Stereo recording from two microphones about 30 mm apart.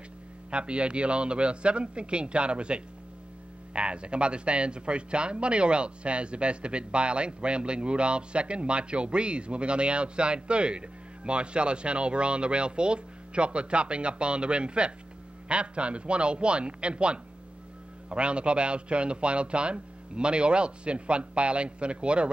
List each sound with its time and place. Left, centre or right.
0.5 s speech: right